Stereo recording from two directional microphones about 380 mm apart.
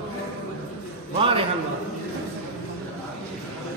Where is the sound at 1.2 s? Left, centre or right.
Centre.